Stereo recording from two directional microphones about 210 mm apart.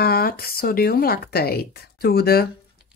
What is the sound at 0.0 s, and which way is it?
Speech, 45° left (ahead or behind).